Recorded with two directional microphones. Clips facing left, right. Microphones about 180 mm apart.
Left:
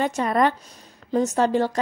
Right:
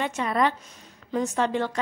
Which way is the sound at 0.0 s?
40° left (ahead or behind).